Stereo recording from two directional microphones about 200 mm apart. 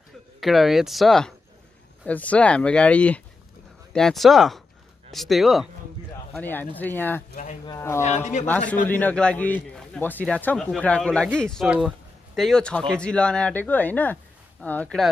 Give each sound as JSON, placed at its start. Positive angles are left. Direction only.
{"t": 0.4, "sound": "a man's voice", "side_deg": 0}
{"t": 8.0, "sound": "speech", "side_deg": 35}
{"t": 8.5, "sound": "a man's voice", "side_deg": 5}